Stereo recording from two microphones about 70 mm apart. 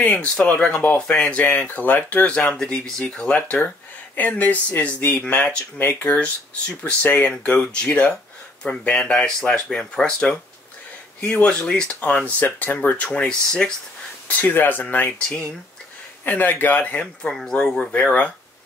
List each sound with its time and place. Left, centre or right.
0.0 s speech: left
14.2 s speech: left
16.3 s speech: left
17.3 s speech: centre